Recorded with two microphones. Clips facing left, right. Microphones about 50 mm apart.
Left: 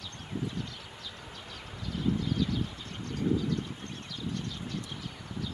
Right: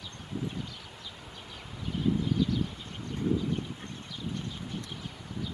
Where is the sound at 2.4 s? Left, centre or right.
Centre.